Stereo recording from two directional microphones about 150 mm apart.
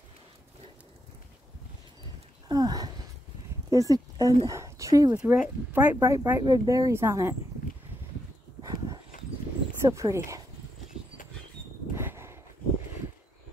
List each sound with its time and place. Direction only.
2.4 s a sound: 25° right (ahead or behind)
3.7 s speech: 25° right (ahead or behind)
5.2 s speech: 10° right (ahead or behind)
5.9 s speech: 20° right (ahead or behind)
8.6 s dog: 25° right (ahead or behind)
9.8 s speech: 20° right (ahead or behind)
11.9 s a sound: 15° right (ahead or behind)